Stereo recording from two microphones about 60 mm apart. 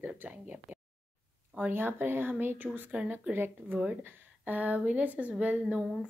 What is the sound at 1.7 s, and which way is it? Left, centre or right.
Speech, right.